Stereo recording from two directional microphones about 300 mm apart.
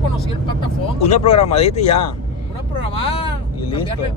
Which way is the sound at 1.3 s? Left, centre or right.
Left.